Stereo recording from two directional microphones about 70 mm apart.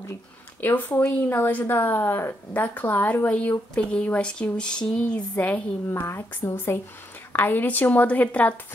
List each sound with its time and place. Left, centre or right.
0.6 s a woman's voice: left
2.6 s a woman's voice: left
4.6 s a sound: centre
5.9 s a woman's voice: left